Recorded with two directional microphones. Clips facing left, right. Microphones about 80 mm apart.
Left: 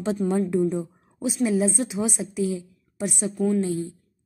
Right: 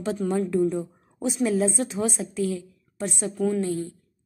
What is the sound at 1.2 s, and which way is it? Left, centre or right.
A woman's voice, centre.